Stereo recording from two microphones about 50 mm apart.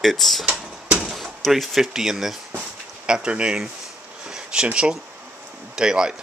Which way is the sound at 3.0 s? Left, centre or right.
Centre.